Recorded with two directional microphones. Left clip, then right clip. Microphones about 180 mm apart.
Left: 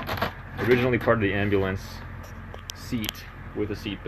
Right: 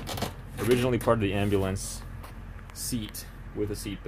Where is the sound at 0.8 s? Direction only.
20° right (ahead or behind).